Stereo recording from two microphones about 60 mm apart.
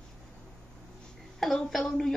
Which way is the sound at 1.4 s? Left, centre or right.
Centre.